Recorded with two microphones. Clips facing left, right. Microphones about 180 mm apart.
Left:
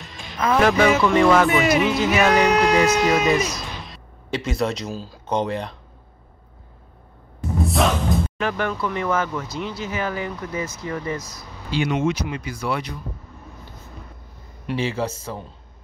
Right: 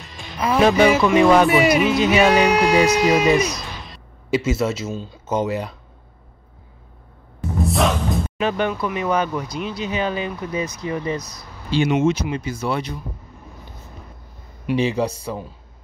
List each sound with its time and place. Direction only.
0.0 s music: centre (ahead or behind)
0.6 s speech: 20° right (ahead or behind)
7.6 s music: centre (ahead or behind)
8.4 s speech: 20° right (ahead or behind)
14.8 s speech: 15° right (ahead or behind)